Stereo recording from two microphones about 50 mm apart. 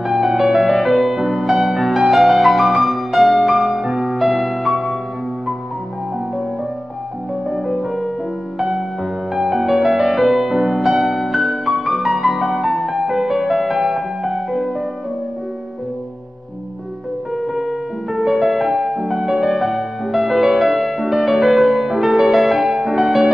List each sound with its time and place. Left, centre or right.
0.0 s music: centre
7.4 s music: centre
8.5 s music: centre
9.3 s music: centre
17.6 s music: centre